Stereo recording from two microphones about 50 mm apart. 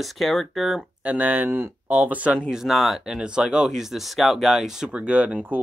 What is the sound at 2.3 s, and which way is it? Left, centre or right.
Speech, centre.